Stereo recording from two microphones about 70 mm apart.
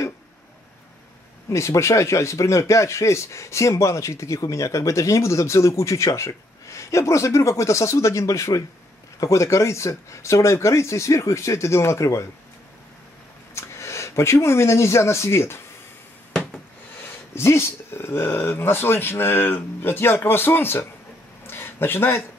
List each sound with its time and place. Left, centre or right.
1.5 s speech: left
13.6 s speech: left
17.3 s speech: left
21.5 s a sound: left